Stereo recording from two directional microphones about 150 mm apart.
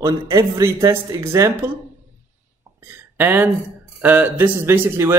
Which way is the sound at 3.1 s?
15° right (ahead or behind).